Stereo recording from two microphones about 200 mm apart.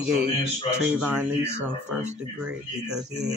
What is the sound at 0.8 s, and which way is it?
Speech, 5° right (ahead or behind).